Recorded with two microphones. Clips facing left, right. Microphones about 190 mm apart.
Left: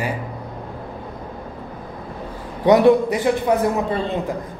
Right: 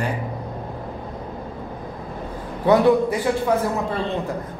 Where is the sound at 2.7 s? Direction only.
20° left (ahead or behind).